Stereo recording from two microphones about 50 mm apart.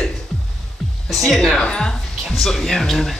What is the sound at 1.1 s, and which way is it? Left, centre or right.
Speech, centre.